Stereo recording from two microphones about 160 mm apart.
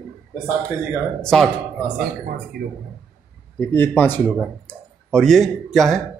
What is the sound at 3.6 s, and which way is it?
A man's voice, 10° left (ahead or behind).